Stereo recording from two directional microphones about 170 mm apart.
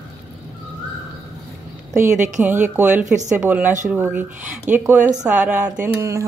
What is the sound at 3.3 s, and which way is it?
Speech, 10° right (ahead or behind).